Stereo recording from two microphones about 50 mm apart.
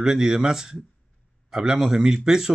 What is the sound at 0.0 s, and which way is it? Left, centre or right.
A man's voice, centre.